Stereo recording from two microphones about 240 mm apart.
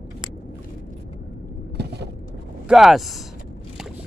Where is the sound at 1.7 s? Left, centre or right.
Right.